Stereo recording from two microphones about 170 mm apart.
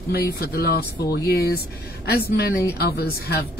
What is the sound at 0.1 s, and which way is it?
A woman's voice, 65° left (ahead or behind).